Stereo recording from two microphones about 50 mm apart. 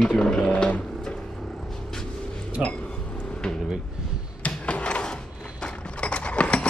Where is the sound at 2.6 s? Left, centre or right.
Left.